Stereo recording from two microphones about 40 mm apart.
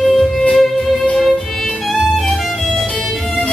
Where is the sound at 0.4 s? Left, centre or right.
Centre.